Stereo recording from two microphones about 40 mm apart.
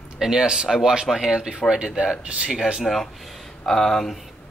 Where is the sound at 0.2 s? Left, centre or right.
Centre.